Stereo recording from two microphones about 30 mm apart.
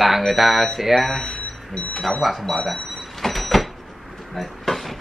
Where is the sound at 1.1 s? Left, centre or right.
Centre.